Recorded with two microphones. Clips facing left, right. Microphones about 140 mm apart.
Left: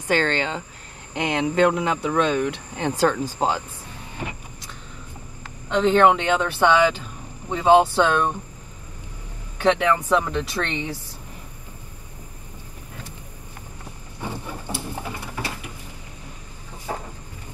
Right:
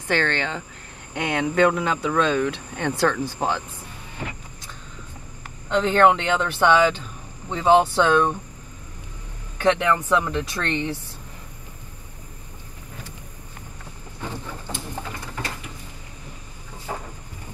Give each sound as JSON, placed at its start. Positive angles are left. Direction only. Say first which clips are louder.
{"t": 0.1, "sound": "speech", "louder": "left 2 dB", "side_deg": 20}
{"t": 5.8, "sound": "speech", "louder": "left 1 dB", "side_deg": 10}
{"t": 9.6, "sound": "speech", "louder": "left 1 dB", "side_deg": 10}
{"t": 14.2, "sound": "a sound", "louder": "left 2 dB", "side_deg": 15}